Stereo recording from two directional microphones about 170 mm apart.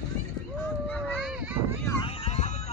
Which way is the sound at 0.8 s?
5° left (ahead or behind).